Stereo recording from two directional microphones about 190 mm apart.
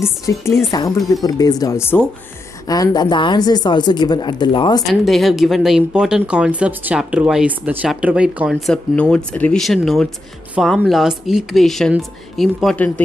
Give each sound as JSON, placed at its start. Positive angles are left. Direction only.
{"t": 0.0, "sound": "speech", "side_deg": 15}
{"t": 4.8, "sound": "speech", "side_deg": 0}